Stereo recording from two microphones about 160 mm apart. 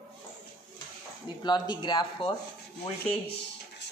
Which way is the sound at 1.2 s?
30° left (ahead or behind).